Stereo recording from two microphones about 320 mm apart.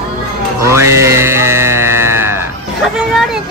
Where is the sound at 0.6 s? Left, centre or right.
Centre.